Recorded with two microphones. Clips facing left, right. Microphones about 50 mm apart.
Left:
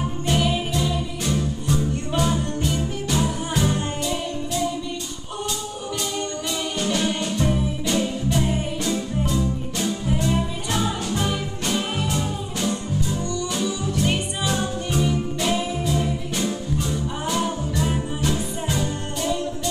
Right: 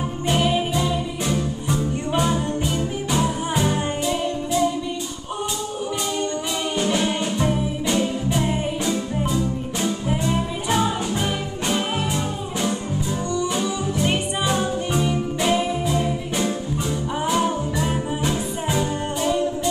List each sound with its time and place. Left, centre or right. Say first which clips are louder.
0.3 s music: right 2 dB; centre
6.8 s music: right 2 dB; centre
13.3 s music: right 2 dB; centre